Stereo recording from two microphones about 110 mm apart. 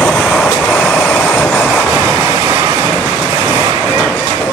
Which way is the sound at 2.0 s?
20° right (ahead or behind).